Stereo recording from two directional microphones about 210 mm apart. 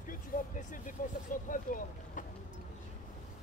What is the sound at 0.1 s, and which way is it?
Speech, 40° left (ahead or behind).